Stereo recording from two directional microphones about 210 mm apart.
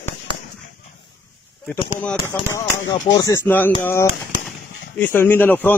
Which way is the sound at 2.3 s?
15° left (ahead or behind).